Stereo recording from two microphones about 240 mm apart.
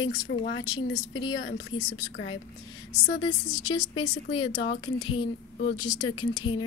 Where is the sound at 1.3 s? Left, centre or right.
Left.